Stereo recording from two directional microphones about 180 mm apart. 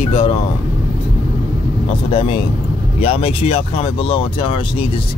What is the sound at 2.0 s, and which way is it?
Speech, 30° left (ahead or behind).